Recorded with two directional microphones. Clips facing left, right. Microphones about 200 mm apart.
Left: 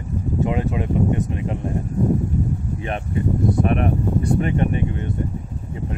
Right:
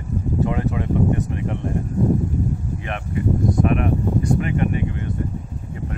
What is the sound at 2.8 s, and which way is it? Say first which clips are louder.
Speech: left 2 dB; 30° left (ahead or behind).